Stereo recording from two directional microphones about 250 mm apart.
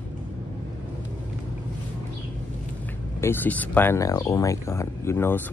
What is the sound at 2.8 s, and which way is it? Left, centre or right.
Speech, centre.